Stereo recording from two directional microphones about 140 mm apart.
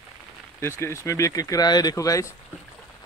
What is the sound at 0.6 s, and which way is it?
Speech, 20° left (ahead or behind).